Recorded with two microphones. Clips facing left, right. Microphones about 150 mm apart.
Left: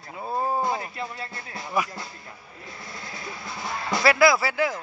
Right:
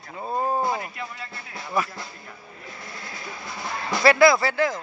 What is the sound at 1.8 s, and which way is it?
Speech, 10° left (ahead or behind).